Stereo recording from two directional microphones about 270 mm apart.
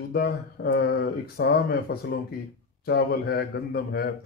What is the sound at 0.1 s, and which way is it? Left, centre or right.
Speech, left.